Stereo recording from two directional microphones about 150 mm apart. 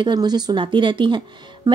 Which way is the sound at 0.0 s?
30° right (ahead or behind).